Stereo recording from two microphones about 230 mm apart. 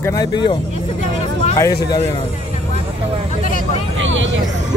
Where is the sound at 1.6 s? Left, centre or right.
Centre.